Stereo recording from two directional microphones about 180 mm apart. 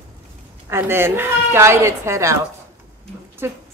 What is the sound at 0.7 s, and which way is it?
A woman's voice, 15° right (ahead or behind).